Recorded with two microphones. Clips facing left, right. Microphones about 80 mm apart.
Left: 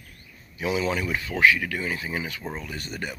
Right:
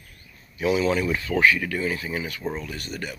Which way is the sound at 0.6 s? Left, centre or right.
Centre.